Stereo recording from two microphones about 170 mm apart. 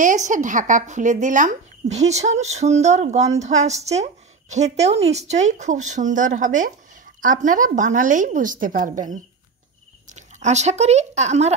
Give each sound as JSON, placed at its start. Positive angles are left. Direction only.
{"t": 0.0, "sound": "speech", "side_deg": -45}